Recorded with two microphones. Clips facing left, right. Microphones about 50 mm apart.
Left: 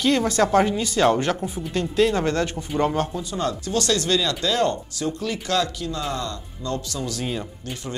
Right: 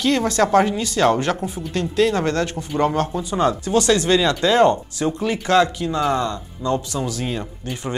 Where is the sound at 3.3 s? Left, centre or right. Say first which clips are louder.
Right 8 dB; right.